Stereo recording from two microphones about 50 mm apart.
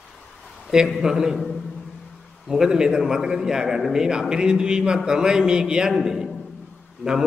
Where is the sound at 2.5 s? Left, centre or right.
Centre.